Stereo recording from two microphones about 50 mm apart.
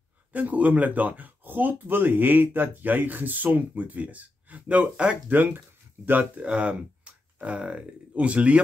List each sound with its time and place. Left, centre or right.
0.3 s speech: right
5.3 s speech: right